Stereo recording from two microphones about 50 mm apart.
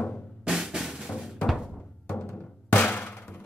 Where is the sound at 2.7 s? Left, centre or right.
Left.